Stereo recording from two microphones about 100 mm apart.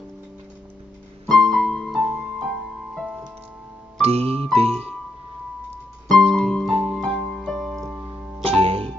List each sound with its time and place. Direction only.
1.2 s keyboard: centre (ahead or behind)
2.3 s music: centre (ahead or behind)
4.0 s music: 85° right
6.0 s keyboard: 5° left (ahead or behind)
6.9 s music: centre (ahead or behind)
8.5 s music: 75° right (ahead or behind)